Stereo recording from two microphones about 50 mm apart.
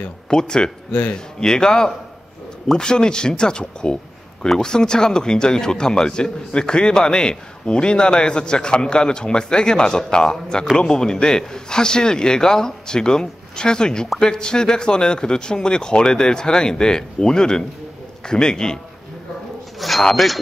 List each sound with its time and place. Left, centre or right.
0.3 s speech: centre
19.8 s speech: centre